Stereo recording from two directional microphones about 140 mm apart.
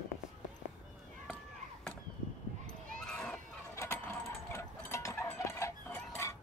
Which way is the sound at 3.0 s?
5° left (ahead or behind).